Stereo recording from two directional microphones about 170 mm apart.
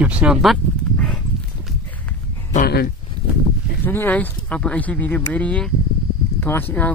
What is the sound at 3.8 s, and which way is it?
Speech, 10° left (ahead or behind).